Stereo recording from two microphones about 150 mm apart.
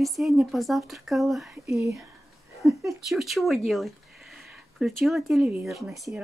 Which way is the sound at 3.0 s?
Centre (ahead or behind).